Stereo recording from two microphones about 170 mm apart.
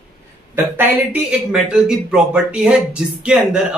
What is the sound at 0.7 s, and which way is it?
Speech, 10° right (ahead or behind).